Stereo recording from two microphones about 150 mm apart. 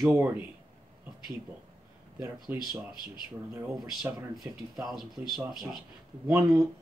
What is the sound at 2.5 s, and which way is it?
Speech, 15° right (ahead or behind).